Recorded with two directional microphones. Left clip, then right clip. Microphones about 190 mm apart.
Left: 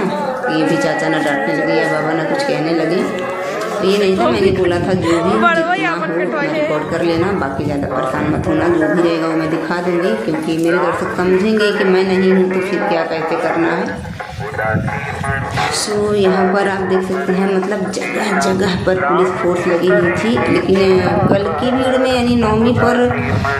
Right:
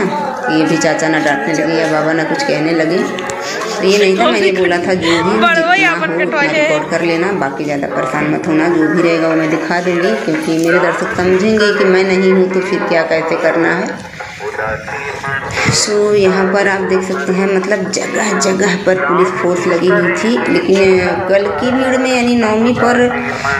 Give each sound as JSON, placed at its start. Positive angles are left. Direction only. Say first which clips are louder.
{"t": 0.6, "sound": "speech", "louder": "right 4 dB", "side_deg": -15}
{"t": 5.0, "sound": "a man's voice", "louder": "right 1 dB", "side_deg": 5}
{"t": 11.4, "sound": "speech", "louder": "right 3 dB", "side_deg": -10}
{"t": 16.2, "sound": "a man's voice", "louder": "right 2 dB", "side_deg": -5}
{"t": 18.6, "sound": "a man's voice", "louder": "right 3 dB", "side_deg": -5}
{"t": 20.8, "sound": "a man's voice", "louder": "right 2 dB", "side_deg": -5}